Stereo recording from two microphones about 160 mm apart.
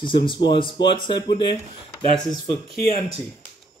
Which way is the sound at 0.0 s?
30° left (ahead or behind).